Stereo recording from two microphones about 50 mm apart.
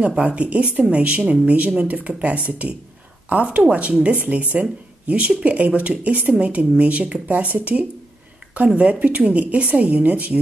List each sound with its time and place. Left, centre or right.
0.0 s speech: right